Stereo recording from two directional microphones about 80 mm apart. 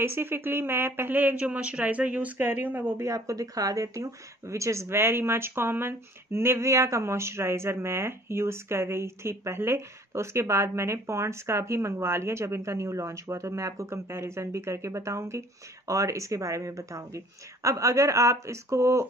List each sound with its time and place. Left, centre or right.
0.0 s speech: right
3.0 s speech: right